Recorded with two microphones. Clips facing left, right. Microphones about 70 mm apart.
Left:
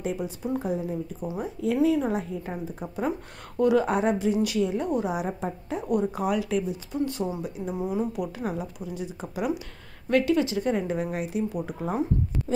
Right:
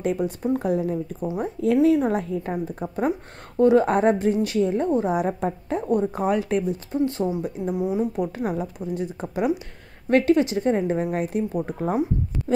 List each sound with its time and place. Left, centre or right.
0.0 s speech: right
1.8 s a woman's voice: right
2.1 s speech: right
2.5 s a woman's voice: right
5.1 s speech: right
6.1 s a woman's voice: right
7.7 s speech: centre
8.2 s a woman's voice: right